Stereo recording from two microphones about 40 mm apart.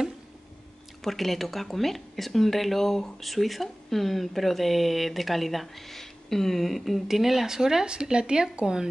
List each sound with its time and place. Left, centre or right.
1.0 s speech: centre